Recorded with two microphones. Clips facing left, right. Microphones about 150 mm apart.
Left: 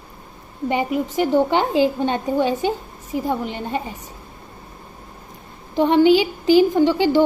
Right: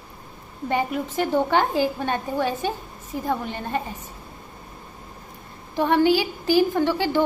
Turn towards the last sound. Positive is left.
turn(degrees=15)  # may be behind; listen again after turning